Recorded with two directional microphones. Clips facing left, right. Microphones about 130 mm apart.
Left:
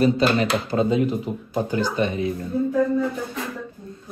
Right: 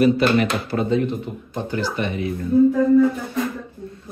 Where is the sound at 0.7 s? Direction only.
20° left (ahead or behind).